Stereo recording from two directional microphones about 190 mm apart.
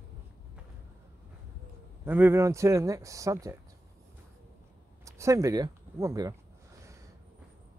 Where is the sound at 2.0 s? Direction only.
10° right (ahead or behind).